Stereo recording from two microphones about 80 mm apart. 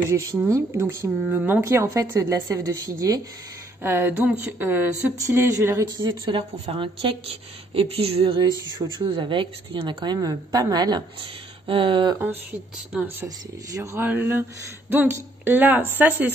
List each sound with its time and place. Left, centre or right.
0.1 s a woman's voice: right
0.5 s a woman's voice: right
2.0 s a woman's voice: right
3.8 s a woman's voice: right
4.3 s a woman's voice: centre
5.2 s a woman's voice: right
5.9 s speech: right
7.8 s a woman's voice: right
10.1 s a woman's voice: right
11.6 s a sound: right
13.9 s a woman's voice: right